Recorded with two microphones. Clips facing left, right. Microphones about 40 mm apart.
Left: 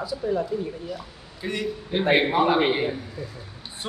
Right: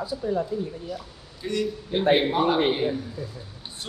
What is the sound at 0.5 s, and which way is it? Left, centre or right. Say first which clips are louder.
Speech: left 1 dB; centre.